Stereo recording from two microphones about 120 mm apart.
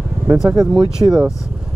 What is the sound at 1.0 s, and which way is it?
Speech, 35° right (ahead or behind).